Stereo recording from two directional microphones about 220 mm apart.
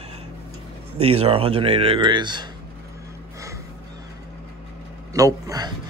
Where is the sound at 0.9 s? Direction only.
25° right (ahead or behind).